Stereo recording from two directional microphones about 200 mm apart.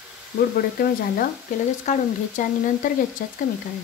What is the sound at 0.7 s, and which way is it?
Speech, 45° left (ahead or behind).